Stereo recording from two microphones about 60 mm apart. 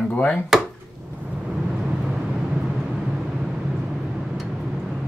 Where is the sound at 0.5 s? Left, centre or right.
Centre.